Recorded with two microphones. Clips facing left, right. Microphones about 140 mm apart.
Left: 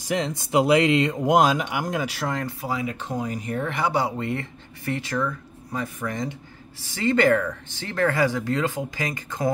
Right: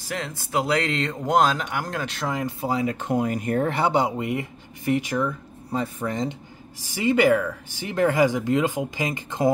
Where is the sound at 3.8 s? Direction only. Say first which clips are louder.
Right 2 dB; 20° right (ahead or behind).